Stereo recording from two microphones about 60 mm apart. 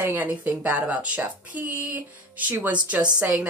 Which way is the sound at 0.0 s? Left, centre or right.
Right.